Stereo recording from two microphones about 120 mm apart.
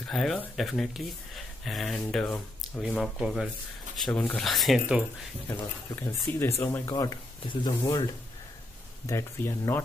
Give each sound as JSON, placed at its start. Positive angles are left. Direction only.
{"t": 0.0, "sound": "speech", "side_deg": 5}
{"t": 4.1, "sound": "speech", "side_deg": 15}
{"t": 4.4, "sound": "speech", "side_deg": 0}
{"t": 5.5, "sound": "speech", "side_deg": 20}
{"t": 7.0, "sound": "speech", "side_deg": 35}
{"t": 9.0, "sound": "speech", "side_deg": 20}